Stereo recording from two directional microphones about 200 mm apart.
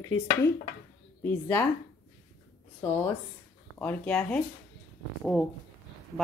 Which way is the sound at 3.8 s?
10° left (ahead or behind).